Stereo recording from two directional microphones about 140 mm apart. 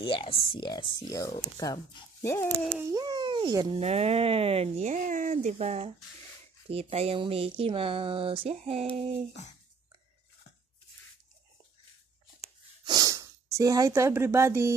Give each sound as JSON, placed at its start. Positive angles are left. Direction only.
{"t": 0.0, "sound": "speech", "side_deg": 40}
{"t": 2.7, "sound": "speech", "side_deg": -20}
{"t": 3.8, "sound": "speech", "side_deg": -50}
{"t": 5.0, "sound": "speech", "side_deg": -70}
{"t": 12.8, "sound": "speech", "side_deg": -30}